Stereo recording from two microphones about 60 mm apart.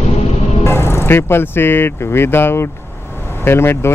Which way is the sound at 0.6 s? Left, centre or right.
Left.